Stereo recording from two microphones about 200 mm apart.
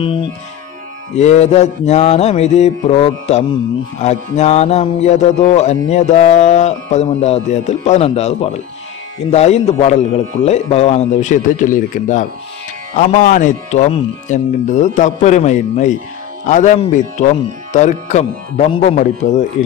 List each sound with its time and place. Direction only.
0.0 s music: 25° left (ahead or behind)